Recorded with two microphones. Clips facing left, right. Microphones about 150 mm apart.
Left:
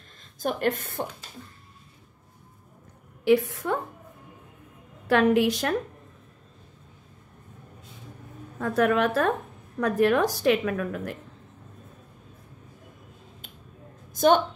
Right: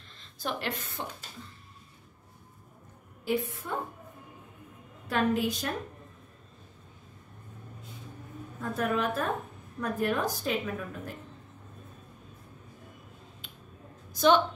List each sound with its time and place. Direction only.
0.2 s a woman's voice: 50° left (ahead or behind)
3.3 s a woman's voice: 85° left
5.0 s a woman's voice: 75° left (ahead or behind)
8.5 s a woman's voice: 75° left (ahead or behind)
14.1 s a woman's voice: 50° left (ahead or behind)